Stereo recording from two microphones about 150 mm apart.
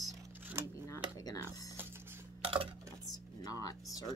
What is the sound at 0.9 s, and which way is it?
Speech, 25° left (ahead or behind).